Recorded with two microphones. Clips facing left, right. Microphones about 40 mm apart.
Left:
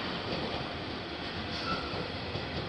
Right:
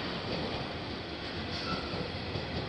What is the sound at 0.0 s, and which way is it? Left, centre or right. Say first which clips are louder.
Train: left 1 dB; centre.